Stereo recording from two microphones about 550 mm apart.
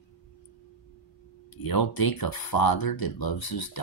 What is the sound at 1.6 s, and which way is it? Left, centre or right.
Speech, left.